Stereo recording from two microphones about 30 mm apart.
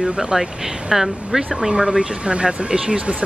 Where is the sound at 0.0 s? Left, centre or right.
Centre.